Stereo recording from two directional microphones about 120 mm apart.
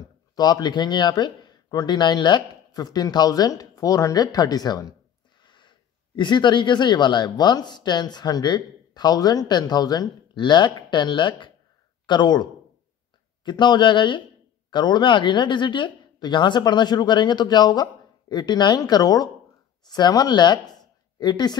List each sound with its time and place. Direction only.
0.4 s speech: 35° left (ahead or behind)